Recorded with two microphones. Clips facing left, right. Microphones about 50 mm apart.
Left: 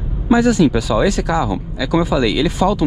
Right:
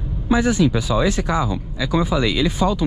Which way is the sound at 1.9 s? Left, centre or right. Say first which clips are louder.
Left 4 dB; left.